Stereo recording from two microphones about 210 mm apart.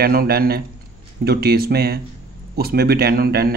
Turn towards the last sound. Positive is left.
turn(degrees=-45)  # may be behind; listen again after turning